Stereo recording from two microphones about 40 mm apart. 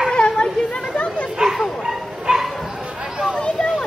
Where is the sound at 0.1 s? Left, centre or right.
Left.